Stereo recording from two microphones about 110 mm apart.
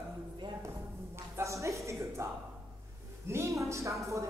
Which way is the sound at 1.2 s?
25° right (ahead or behind).